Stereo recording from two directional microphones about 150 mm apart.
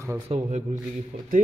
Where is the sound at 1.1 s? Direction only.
45° right (ahead or behind).